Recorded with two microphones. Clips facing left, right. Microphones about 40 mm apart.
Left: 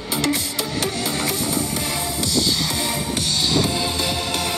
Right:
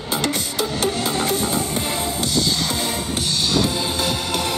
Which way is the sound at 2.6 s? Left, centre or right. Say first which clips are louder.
Right 1 dB; centre.